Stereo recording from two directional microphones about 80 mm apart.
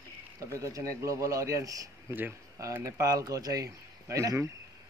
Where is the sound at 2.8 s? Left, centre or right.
Right.